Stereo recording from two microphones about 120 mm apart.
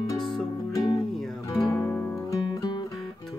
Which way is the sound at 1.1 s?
5° left (ahead or behind).